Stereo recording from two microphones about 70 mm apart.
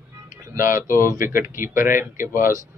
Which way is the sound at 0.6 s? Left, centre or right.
Right.